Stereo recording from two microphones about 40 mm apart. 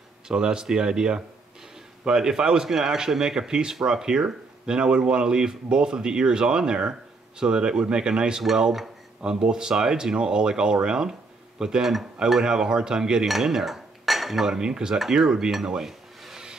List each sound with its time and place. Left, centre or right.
0.3 s speech: centre
13.3 s cutlery: centre
14.6 s speech: centre
16.2 s a sound: centre